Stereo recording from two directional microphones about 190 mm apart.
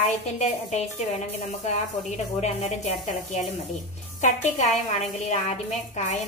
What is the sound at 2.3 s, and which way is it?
A woman's voice, 35° left (ahead or behind).